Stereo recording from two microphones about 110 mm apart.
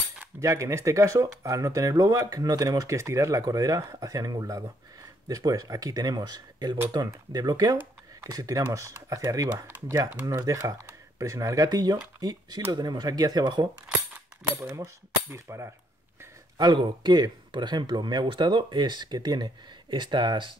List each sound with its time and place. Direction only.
0.4 s speech: 30° right (ahead or behind)
14.8 s speech: 25° right (ahead or behind)
16.5 s speech: 40° right (ahead or behind)